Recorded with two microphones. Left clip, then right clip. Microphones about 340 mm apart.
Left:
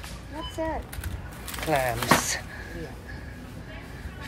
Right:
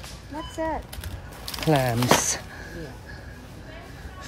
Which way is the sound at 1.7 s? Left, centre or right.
Right.